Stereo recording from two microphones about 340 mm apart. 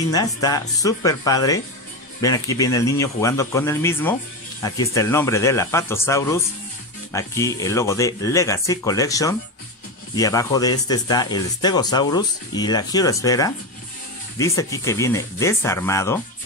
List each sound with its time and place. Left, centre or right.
0.1 s speech: centre